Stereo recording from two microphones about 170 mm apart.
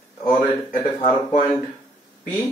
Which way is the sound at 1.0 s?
45° left (ahead or behind).